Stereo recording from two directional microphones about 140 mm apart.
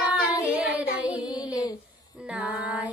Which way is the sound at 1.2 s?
30° left (ahead or behind).